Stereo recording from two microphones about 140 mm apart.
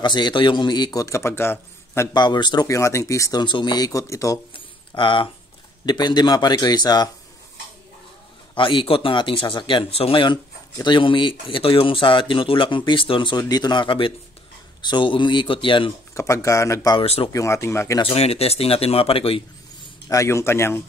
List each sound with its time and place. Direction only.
0.0 s speech: 30° left (ahead or behind); by 2.0 s 15° left (ahead or behind)
2.1 s speech: 30° left (ahead or behind)
4.6 s a sound: 35° left (ahead or behind)
5.9 s speech: 30° left (ahead or behind)
8.5 s speech: 35° left (ahead or behind)
16.2 s speech: 20° left (ahead or behind)
17.0 s speech: 45° left (ahead or behind)
17.3 s speech: 20° left (ahead or behind)
18.0 s speech: 45° left (ahead or behind)
20.1 s speech: 20° left (ahead or behind)